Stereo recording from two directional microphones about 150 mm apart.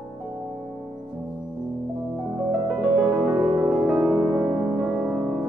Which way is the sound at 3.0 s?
15° right (ahead or behind).